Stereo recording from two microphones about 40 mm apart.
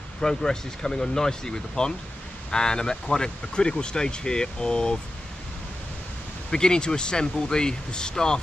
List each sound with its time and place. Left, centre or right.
0.2 s speech: centre
6.5 s speech: centre